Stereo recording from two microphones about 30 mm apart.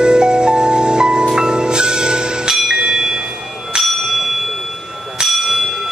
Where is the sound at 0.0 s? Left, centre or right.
Right.